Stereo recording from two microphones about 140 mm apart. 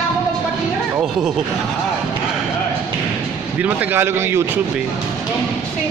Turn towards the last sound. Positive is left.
turn(degrees=-15)  # may be behind; listen again after turning